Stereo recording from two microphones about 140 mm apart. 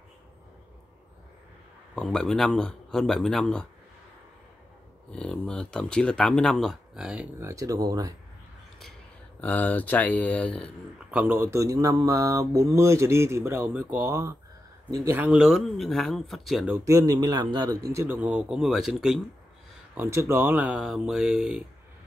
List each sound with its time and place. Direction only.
2.0 s speech: 5° left (ahead or behind)
5.1 s speech: 5° left (ahead or behind)
7.4 s speech: 25° right (ahead or behind)
9.4 s speech: 10° left (ahead or behind)
11.1 s speech: 15° right (ahead or behind)
16.7 s speech: 25° right (ahead or behind)
18.0 s speech: 10° right (ahead or behind)
19.9 s speech: 15° right (ahead or behind)